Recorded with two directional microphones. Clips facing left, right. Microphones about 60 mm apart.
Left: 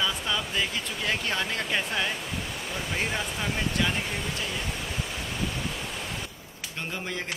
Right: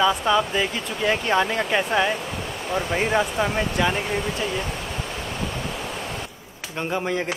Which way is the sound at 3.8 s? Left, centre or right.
Centre.